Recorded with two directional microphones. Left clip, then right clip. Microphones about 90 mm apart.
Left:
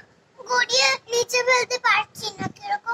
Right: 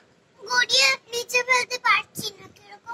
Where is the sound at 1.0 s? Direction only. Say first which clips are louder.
Left 3 dB; 35° left (ahead or behind).